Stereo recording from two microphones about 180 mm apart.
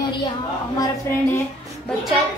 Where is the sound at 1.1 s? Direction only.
15° left (ahead or behind).